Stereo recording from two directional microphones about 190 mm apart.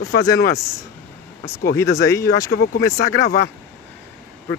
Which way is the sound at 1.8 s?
15° left (ahead or behind).